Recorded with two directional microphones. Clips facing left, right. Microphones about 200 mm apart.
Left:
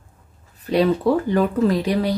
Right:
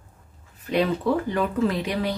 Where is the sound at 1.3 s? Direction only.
40° left (ahead or behind).